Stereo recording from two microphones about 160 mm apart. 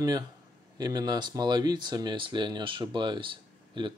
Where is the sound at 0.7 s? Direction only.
25° right (ahead or behind).